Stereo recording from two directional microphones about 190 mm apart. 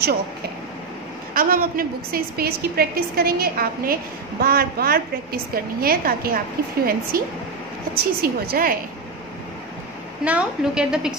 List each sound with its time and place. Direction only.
1.3 s a woman's voice: 50° right (ahead or behind)
10.2 s a woman's voice: 5° right (ahead or behind)